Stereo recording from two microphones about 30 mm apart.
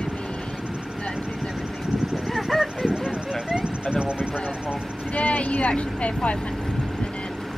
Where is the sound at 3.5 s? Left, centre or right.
Right.